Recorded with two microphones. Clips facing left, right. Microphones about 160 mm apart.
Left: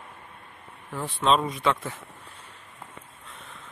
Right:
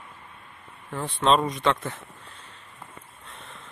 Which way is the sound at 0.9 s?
5° left (ahead or behind).